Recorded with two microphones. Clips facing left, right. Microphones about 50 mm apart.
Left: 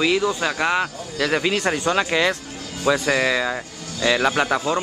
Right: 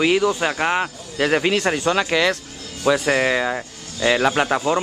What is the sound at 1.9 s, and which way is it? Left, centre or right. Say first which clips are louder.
Speech: even; centre.